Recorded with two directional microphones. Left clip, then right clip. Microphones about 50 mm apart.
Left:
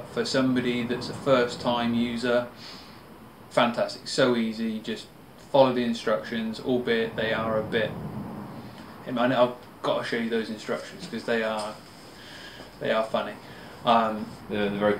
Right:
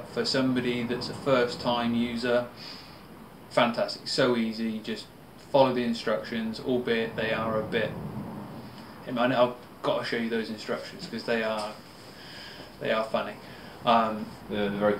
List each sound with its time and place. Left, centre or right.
0.1 s speech: centre
3.5 s speech: centre
9.0 s speech: centre
12.8 s speech: centre
14.5 s speech: centre